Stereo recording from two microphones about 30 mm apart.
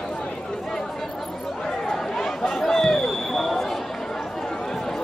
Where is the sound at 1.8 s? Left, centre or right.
Centre.